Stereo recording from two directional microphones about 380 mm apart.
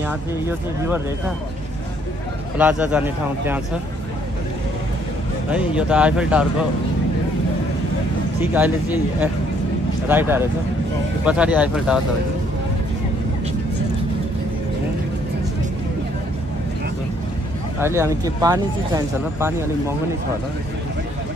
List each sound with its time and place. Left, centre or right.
0.0 s a man's voice: centre
2.5 s a man's voice: centre
5.5 s a man's voice: centre
8.4 s a man's voice: centre
17.7 s speech: centre